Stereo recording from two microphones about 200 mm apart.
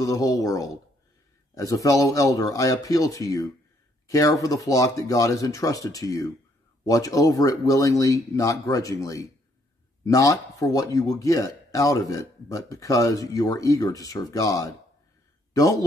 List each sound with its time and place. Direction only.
0.0 s speech: 15° left (ahead or behind)